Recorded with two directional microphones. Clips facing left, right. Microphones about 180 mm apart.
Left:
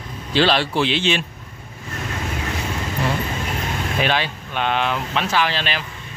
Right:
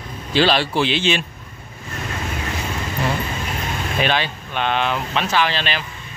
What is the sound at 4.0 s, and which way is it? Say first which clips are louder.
Speech: right 1 dB; 5° left (ahead or behind).